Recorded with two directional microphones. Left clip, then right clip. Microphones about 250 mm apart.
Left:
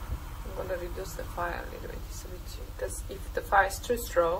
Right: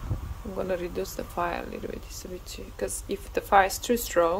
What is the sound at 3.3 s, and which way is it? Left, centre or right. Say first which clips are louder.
Speech: right 4 dB; right.